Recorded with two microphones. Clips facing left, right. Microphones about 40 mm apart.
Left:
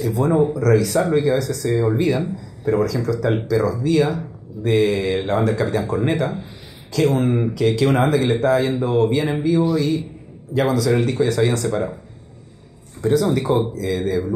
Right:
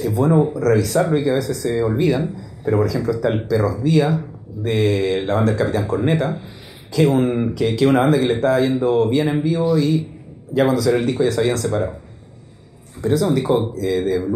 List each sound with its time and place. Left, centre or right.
0.0 s speech: centre
13.0 s speech: centre